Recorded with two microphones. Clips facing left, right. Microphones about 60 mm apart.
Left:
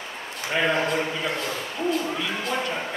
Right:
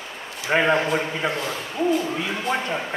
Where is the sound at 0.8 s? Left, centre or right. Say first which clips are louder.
Right 1 dB; centre.